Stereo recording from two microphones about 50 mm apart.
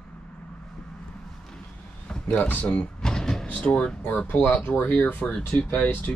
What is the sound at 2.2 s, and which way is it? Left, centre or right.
Speech, left.